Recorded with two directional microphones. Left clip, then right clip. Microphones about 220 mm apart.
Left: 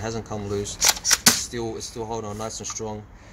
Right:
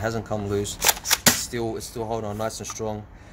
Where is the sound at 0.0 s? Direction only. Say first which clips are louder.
Right 3 dB; 30° right (ahead or behind).